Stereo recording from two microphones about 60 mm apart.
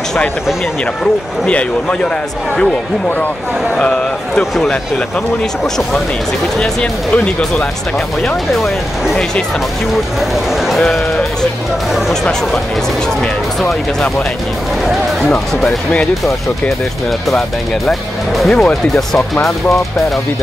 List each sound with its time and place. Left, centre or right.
1.5 s speech: centre
3.7 s speech: centre
6.6 s speech: centre
8.6 s speech: centre
10.7 s speech: centre
15.2 s speech: centre
18.4 s speech: centre